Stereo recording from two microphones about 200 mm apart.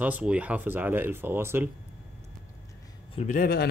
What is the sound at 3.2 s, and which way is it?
Speech, 40° left (ahead or behind).